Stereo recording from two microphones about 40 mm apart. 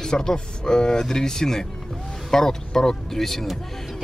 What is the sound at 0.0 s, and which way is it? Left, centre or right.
Speech, centre.